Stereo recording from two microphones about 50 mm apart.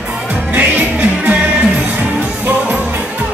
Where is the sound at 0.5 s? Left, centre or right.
Right.